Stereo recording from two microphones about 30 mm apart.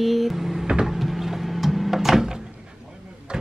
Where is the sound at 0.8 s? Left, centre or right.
Centre.